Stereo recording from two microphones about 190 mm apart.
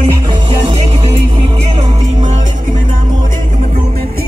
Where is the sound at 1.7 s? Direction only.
40° right (ahead or behind).